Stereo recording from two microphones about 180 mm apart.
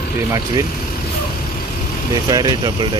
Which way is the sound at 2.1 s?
20° right (ahead or behind).